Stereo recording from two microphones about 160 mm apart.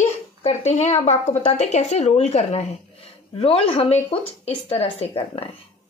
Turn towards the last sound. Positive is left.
turn(degrees=35)  # may be behind; listen again after turning